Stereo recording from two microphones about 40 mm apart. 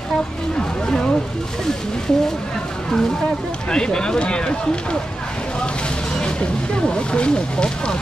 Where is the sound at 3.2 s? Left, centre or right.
Left.